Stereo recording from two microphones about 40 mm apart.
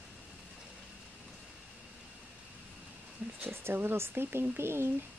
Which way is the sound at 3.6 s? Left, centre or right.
Right.